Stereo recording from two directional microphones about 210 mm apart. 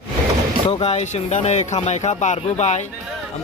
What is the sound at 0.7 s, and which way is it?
A man's voice, 25° left (ahead or behind).